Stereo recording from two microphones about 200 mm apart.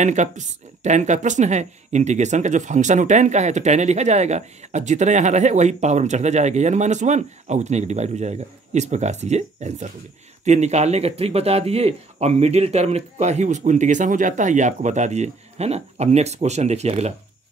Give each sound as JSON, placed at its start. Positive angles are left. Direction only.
{"t": 0.0, "sound": "speech", "side_deg": -35}